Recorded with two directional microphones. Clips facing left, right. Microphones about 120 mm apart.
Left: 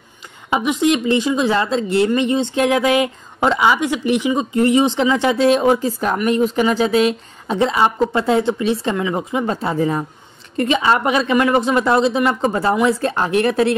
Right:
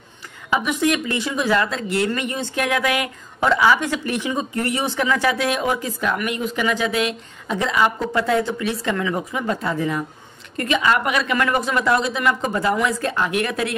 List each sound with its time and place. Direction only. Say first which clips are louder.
0.5 s a woman's voice: left 4 dB; 20° left (ahead or behind)